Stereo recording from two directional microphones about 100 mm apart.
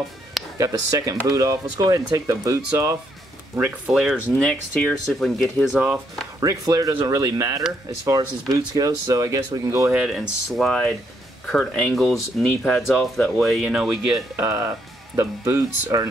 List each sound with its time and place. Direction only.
0.6 s speech: 35° right (ahead or behind)
3.5 s speech: 15° right (ahead or behind)
3.9 s speech: 5° right (ahead or behind)
4.4 s speech: 5° left (ahead or behind)
5.8 s speech: 15° right (ahead or behind)
6.4 s speech: 35° right (ahead or behind)
9.9 s speech: 5° right (ahead or behind)
13.7 s speech: 10° right (ahead or behind)
14.3 s speech: 30° right (ahead or behind)